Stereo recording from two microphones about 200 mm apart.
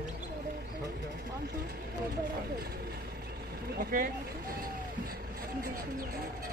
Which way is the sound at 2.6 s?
50° right (ahead or behind).